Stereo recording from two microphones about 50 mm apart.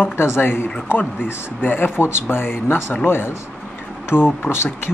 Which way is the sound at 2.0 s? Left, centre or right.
Left.